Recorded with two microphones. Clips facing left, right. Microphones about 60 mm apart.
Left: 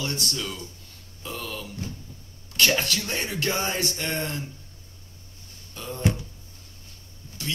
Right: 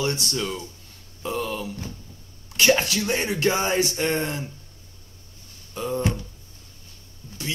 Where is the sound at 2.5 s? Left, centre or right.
Centre.